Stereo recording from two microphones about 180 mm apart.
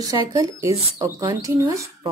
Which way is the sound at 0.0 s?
20° right (ahead or behind).